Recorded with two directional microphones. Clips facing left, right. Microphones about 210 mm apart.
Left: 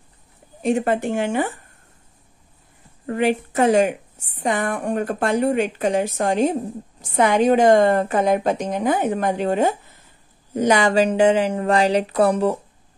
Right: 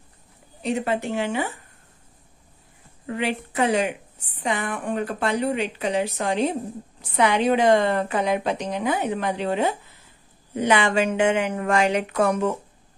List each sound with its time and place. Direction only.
0.6 s a woman's voice: 50° left (ahead or behind)
3.1 s a woman's voice: 45° left (ahead or behind)